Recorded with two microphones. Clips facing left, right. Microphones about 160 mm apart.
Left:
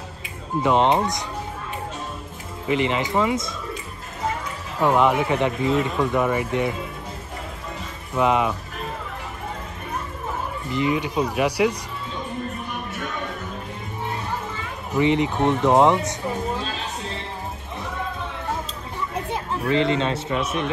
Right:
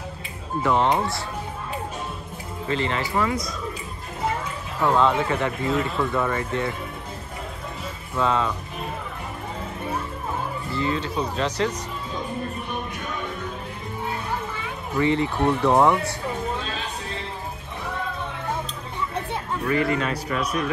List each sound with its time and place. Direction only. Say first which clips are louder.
0.6 s speech: left 2 dB; 20° left (ahead or behind)
2.7 s speech: left 3 dB; 15° left (ahead or behind)
4.7 s speech: left 2 dB; 15° left (ahead or behind)
8.2 s speech: left 3 dB; 15° left (ahead or behind)
10.7 s speech: left 4 dB; 15° left (ahead or behind)
15.0 s speech: left 2 dB; 20° left (ahead or behind)
19.7 s speech: left 2 dB; 25° left (ahead or behind)